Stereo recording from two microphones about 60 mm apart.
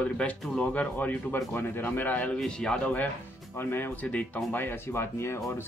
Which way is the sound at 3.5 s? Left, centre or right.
Left.